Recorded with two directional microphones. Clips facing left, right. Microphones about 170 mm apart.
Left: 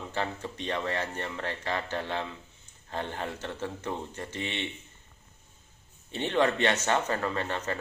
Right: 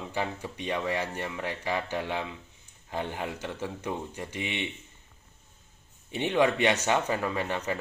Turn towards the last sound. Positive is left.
turn(degrees=-15)  # may be behind; listen again after turning